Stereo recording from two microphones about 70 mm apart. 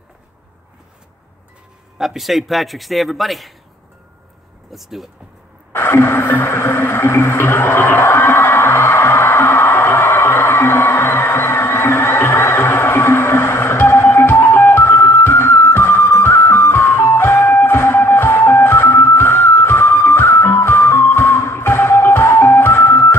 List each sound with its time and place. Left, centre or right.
2.0 s a man's voice: centre
4.7 s a man's voice: centre
5.7 s a sound: left
9.7 s music: left